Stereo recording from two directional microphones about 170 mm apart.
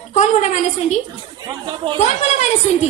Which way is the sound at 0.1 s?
40° left (ahead or behind).